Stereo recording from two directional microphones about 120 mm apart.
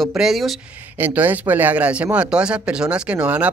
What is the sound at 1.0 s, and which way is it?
Speech, 15° right (ahead or behind).